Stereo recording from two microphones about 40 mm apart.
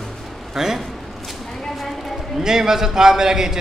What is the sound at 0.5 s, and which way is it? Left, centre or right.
Speech, centre.